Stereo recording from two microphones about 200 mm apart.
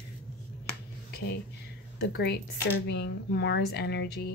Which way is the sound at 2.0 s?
55° left (ahead or behind).